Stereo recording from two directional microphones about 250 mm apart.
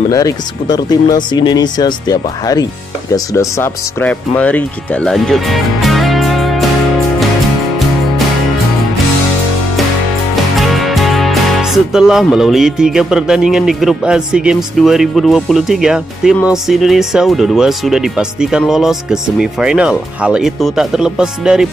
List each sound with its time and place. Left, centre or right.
0.1 s speech: centre
10.6 s music: centre